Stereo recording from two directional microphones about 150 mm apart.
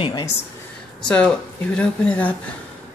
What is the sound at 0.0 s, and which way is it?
Speech, 30° left (ahead or behind).